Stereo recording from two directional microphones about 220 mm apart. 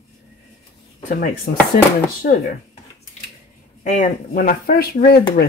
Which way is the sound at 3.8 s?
35° left (ahead or behind).